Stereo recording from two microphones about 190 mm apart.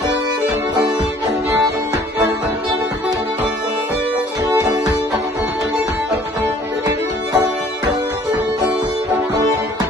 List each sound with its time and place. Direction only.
6.4 s music: 15° right (ahead or behind)